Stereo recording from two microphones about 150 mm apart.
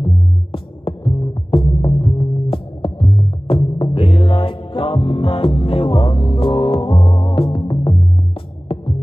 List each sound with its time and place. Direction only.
0.0 s music: 35° left (ahead or behind)